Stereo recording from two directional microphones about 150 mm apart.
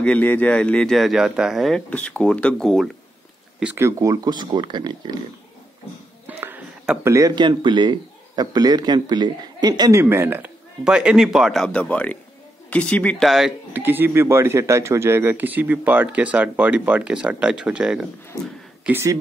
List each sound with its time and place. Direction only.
0.0 s speech: 10° left (ahead or behind); by 3.8 s 5° right (ahead or behind)
3.8 s speech: 20° right (ahead or behind)
6.2 s speech: 10° right (ahead or behind)
13.7 s speech: 15° right (ahead or behind)
18.3 s speech: 25° left (ahead or behind)
18.9 s speech: 15° right (ahead or behind)